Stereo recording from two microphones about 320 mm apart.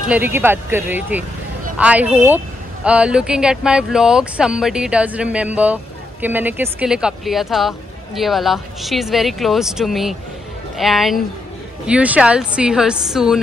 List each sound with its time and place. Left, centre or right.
0.1 s speech: centre